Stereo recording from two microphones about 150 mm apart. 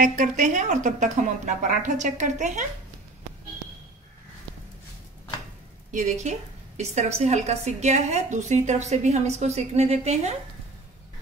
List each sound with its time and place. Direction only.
0.0 s speech: 55° right (ahead or behind)
5.9 s a woman's voice: 55° right (ahead or behind)